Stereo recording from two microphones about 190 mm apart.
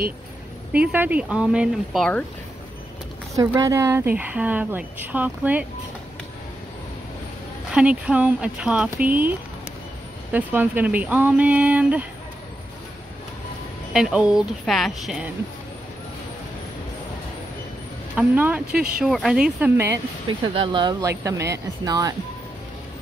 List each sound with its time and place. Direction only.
0.7 s a woman's voice: 10° right (ahead or behind)
3.3 s a woman's voice: 15° right (ahead or behind)
7.7 s a woman's voice: 5° right (ahead or behind)
10.3 s a woman's voice: 10° right (ahead or behind)
13.9 s speech: 5° right (ahead or behind)
18.1 s speech: 10° right (ahead or behind)
20.2 s a woman's voice: 25° right (ahead or behind)